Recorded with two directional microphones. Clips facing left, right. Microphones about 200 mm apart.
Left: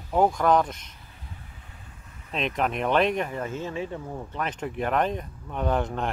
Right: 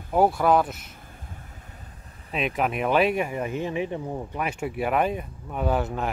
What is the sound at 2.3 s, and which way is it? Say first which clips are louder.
Speech: right 1 dB; 5° right (ahead or behind).